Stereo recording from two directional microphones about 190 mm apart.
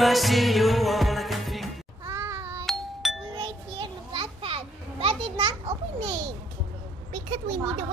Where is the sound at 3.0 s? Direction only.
Centre (ahead or behind).